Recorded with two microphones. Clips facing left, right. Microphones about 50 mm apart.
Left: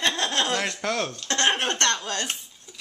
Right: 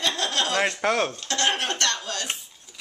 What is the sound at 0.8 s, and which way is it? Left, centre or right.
Speech, right.